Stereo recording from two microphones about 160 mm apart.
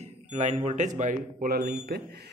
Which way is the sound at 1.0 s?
60° right (ahead or behind).